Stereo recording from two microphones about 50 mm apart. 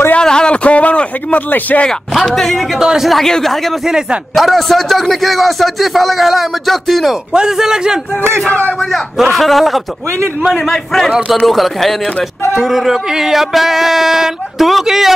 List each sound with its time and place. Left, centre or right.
0.2 s a sound: centre
0.7 s speech: left
1.9 s a man's voice: centre
2.8 s a man's voice: centre
3.1 s a man's voice: centre
9.1 s a man's voice: centre
11.1 s a man's voice: centre
11.4 s a man's voice: centre